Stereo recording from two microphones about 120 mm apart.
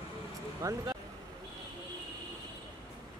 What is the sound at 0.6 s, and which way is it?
Speech, 30° right (ahead or behind).